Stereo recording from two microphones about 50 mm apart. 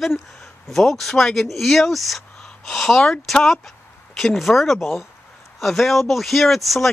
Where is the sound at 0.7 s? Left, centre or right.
Centre.